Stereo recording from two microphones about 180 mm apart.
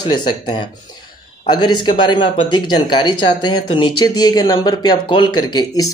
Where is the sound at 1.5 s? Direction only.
25° left (ahead or behind).